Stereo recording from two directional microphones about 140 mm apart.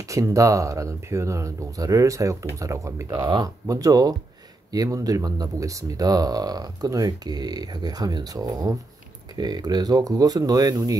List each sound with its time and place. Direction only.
0.1 s speech: 25° right (ahead or behind)